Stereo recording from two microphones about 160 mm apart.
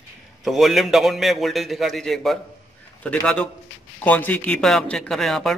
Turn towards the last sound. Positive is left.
turn(degrees=0)  # may be behind; listen again after turning